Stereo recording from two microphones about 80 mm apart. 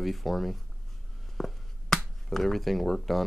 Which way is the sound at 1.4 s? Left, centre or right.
Centre.